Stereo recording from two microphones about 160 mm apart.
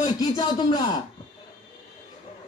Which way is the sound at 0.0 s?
25° left (ahead or behind).